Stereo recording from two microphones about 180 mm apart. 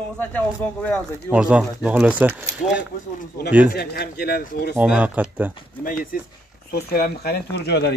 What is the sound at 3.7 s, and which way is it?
Speech, 60° left (ahead or behind).